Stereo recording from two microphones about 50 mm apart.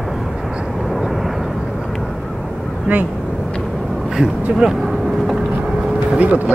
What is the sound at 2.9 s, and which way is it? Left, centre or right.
Speech, right.